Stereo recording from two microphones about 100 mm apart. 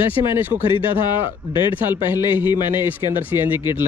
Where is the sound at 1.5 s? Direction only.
55° left (ahead or behind).